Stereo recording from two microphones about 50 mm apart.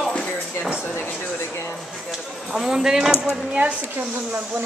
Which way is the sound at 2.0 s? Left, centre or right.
Centre.